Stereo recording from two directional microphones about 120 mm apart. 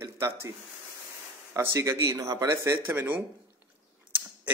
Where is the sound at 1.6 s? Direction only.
25° right (ahead or behind).